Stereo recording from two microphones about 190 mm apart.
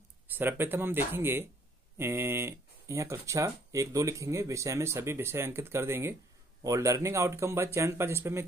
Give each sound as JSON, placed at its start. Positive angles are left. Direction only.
{"t": 0.3, "sound": "speech", "side_deg": -10}